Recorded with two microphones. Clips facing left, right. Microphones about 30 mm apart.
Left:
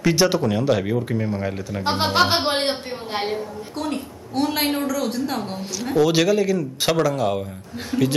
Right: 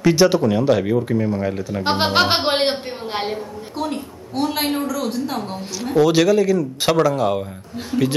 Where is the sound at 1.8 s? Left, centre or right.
Right.